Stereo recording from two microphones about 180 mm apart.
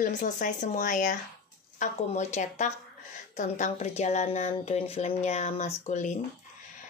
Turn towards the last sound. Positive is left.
turn(degrees=40)  # may be behind; listen again after turning